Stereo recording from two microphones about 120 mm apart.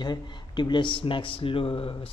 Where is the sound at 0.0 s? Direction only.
40° left (ahead or behind).